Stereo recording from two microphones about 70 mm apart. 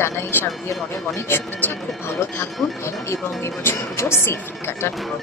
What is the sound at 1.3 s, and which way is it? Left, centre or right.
Speech, left.